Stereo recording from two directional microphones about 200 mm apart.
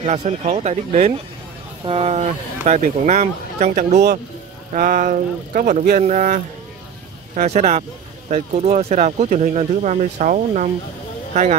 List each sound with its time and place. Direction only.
0.0 s speech: 35° right (ahead or behind)